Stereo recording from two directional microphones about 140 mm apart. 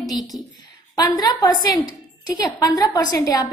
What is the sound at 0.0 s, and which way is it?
Speech, centre (ahead or behind).